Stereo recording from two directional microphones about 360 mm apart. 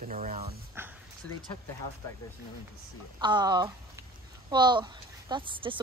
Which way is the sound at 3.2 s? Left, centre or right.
Centre.